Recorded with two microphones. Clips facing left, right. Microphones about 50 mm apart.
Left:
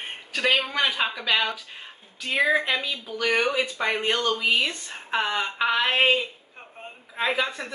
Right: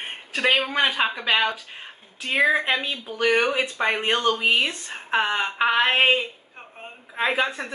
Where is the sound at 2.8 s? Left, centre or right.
Right.